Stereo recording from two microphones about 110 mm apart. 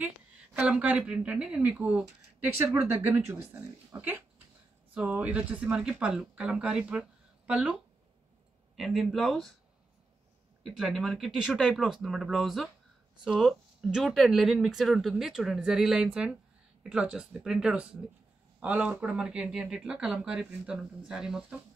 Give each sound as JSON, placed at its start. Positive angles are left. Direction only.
{"t": 0.0, "sound": "a woman's voice", "side_deg": -10}
{"t": 8.7, "sound": "speech", "side_deg": 0}
{"t": 10.6, "sound": "a woman's voice", "side_deg": -5}